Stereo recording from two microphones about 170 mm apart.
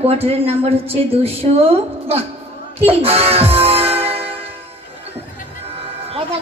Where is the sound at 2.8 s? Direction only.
35° right (ahead or behind).